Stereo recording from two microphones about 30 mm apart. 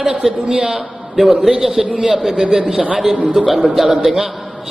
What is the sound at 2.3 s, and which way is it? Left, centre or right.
A man's voice, right.